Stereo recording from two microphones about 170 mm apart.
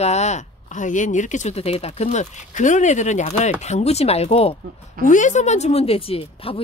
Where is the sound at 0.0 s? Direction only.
40° left (ahead or behind).